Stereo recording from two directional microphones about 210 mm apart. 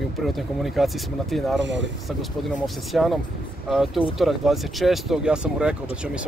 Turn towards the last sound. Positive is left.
turn(degrees=-5)  # may be behind; listen again after turning